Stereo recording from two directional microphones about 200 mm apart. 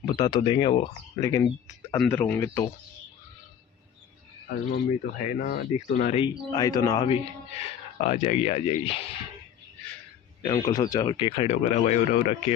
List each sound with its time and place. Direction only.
0.0 s speech: 20° left (ahead or behind)
4.7 s speech: 40° left (ahead or behind)
6.1 s speech: 20° left (ahead or behind)
7.1 s speech: 30° left (ahead or behind)
10.4 s speech: 20° left (ahead or behind); by 12.5 s 35° left (ahead or behind)